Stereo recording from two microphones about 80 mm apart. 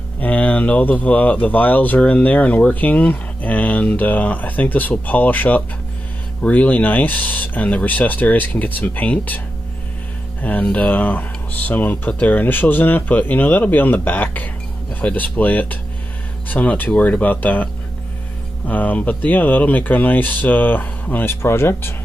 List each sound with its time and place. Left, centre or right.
0.2 s speech: centre
10.4 s speech: centre
18.7 s speech: left